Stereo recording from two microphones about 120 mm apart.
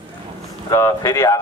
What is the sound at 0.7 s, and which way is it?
Speech, 30° left (ahead or behind).